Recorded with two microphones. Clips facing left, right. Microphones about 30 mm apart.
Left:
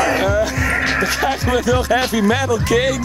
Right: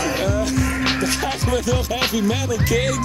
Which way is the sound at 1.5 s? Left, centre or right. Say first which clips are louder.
Left 6 dB; centre.